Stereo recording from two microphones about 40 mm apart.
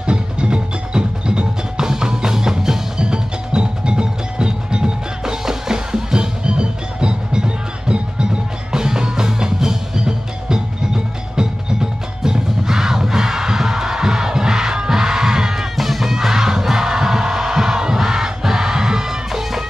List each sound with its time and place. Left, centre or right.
0.0 s music: right
15.7 s music: centre